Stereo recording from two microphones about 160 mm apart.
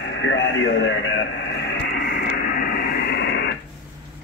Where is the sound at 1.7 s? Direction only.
90° left.